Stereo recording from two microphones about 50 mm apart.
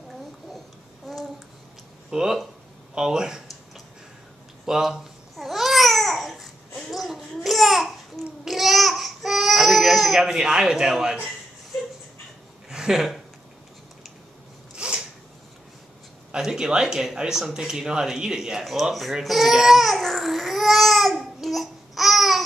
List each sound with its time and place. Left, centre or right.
1.1 s babbling: centre
2.0 s speech: centre
4.6 s speech: centre
5.3 s babbling: centre
10.3 s speech: centre
12.6 s a sound: centre
14.8 s a sound: centre
16.3 s speech: centre